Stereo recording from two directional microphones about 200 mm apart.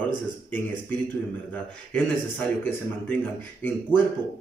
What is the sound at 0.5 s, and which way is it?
Speech, 10° left (ahead or behind).